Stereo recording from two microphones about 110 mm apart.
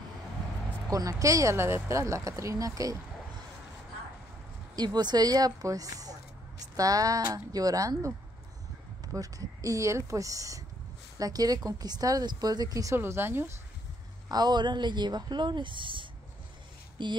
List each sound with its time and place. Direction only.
0.8 s speech: 30° right (ahead or behind)
4.7 s speech: 40° right (ahead or behind); by 13.5 s 20° right (ahead or behind)
14.3 s speech: 40° right (ahead or behind)